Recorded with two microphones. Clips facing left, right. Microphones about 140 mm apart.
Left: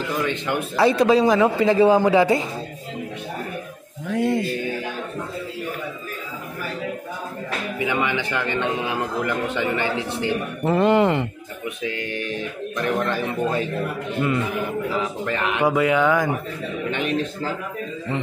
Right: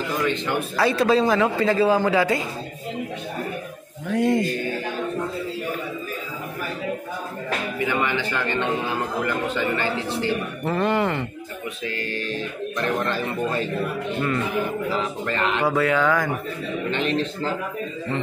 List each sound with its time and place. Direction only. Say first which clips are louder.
0.5 s a man's voice: left 6 dB; 20° left (ahead or behind)
4.1 s music: right 1 dB; 5° left (ahead or behind)
7.8 s a man's voice: left 1 dB; 15° left (ahead or behind)
15.0 s a man's voice: left 1 dB; 10° left (ahead or behind)